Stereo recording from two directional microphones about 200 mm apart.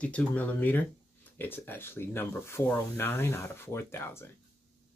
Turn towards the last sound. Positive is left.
turn(degrees=10)  # may be behind; listen again after turning